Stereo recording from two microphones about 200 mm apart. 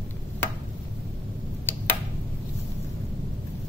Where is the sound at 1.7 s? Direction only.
10° left (ahead or behind).